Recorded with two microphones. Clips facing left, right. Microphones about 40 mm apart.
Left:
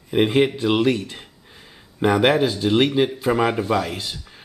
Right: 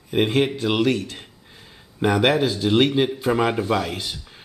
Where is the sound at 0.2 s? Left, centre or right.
Centre.